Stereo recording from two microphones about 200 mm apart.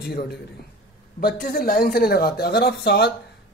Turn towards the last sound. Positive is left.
turn(degrees=55)  # may be behind; listen again after turning